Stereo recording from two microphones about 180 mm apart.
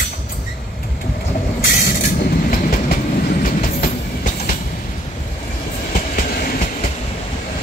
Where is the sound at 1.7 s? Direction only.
55° left (ahead or behind).